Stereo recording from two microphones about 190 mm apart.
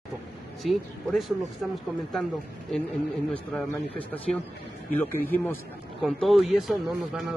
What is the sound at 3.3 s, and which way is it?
A man's voice, 10° left (ahead or behind).